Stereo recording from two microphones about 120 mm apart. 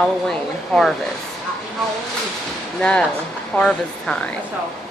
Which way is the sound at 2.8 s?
10° left (ahead or behind).